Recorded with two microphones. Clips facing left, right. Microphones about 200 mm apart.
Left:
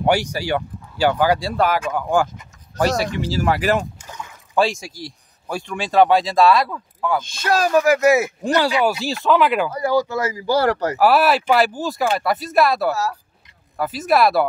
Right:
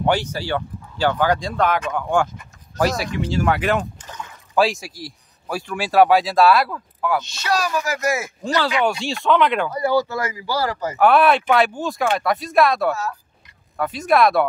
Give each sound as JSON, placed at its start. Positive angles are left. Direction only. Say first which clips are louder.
{"t": 0.0, "sound": "speech", "louder": "left 2 dB", "side_deg": 10}
{"t": 4.6, "sound": "speech", "louder": "even", "side_deg": 0}
{"t": 7.4, "sound": "speech", "louder": "left 8 dB", "side_deg": 50}
{"t": 8.8, "sound": "speech", "louder": "left 1 dB", "side_deg": 5}
{"t": 10.3, "sound": "speech", "louder": "left 6 dB", "side_deg": 50}
{"t": 11.0, "sound": "speech", "louder": "right 2 dB", "side_deg": 5}